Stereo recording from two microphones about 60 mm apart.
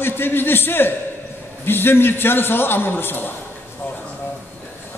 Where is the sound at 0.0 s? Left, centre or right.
Left.